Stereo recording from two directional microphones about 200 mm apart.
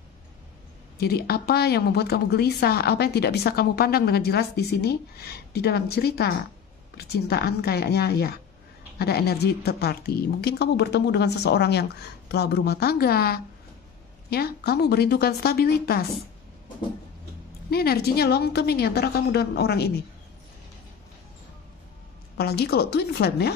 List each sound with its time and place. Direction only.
0.9 s a woman's voice: 50° left (ahead or behind)
17.6 s a woman's voice: 50° left (ahead or behind)
22.4 s a woman's voice: 50° left (ahead or behind)